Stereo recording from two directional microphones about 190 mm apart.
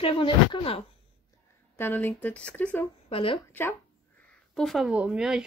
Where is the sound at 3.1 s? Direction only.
30° left (ahead or behind).